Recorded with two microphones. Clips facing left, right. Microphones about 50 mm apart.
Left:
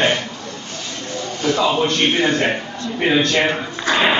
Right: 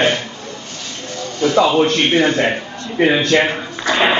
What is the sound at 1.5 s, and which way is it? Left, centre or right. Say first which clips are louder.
Speech: right 4 dB; right.